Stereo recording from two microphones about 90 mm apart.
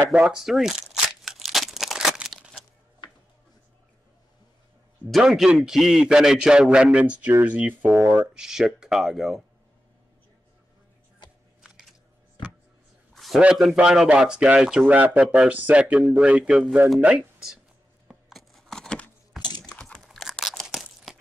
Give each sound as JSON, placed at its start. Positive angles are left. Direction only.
{"t": 0.1, "sound": "crumpling", "side_deg": -10}
{"t": 5.1, "sound": "a man's voice", "side_deg": -5}
{"t": 8.4, "sound": "speech", "side_deg": -5}
{"t": 11.6, "sound": "a sound", "side_deg": -5}
{"t": 13.1, "sound": "a sound", "side_deg": 0}
{"t": 13.4, "sound": "a man's voice", "side_deg": -10}
{"t": 18.0, "sound": "a sound", "side_deg": 0}
{"t": 19.4, "sound": "typing", "side_deg": 50}
{"t": 19.8, "sound": "tearing", "side_deg": 5}